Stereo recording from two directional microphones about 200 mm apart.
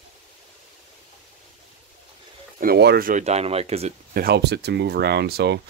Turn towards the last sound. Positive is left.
turn(degrees=-55)  # may be behind; listen again after turning